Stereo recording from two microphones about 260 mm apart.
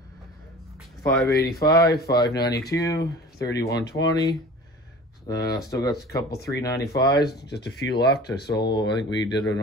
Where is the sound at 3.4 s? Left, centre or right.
Centre.